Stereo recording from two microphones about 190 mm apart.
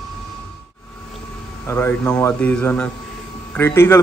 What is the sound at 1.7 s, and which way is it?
A man's voice, 10° left (ahead or behind).